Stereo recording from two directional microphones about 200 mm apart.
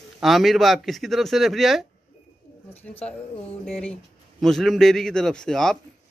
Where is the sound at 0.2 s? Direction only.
Centre (ahead or behind).